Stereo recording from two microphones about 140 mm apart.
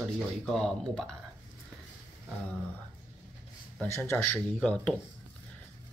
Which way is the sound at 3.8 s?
15° left (ahead or behind).